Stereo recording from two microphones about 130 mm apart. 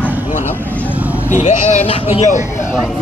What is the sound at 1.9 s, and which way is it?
Speech, 50° left (ahead or behind).